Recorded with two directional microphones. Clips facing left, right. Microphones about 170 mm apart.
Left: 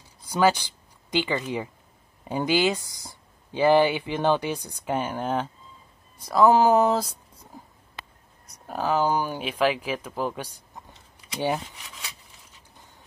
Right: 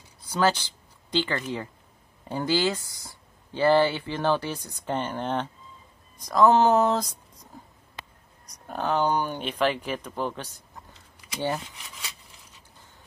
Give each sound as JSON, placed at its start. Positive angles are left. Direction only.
{"t": 0.3, "sound": "speech", "side_deg": 10}
{"t": 8.5, "sound": "speech", "side_deg": 5}